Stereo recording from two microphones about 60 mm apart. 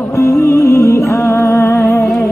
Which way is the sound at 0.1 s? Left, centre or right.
Left.